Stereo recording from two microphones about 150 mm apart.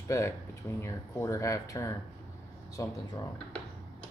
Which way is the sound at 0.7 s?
20° left (ahead or behind).